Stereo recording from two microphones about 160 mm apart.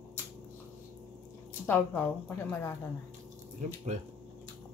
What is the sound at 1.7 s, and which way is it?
A woman's voice, 10° left (ahead or behind).